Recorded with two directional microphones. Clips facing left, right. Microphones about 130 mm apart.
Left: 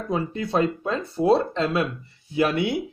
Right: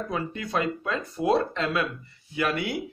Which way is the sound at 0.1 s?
30° left (ahead or behind).